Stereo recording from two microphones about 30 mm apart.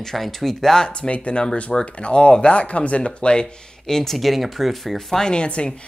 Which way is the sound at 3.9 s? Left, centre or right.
Centre.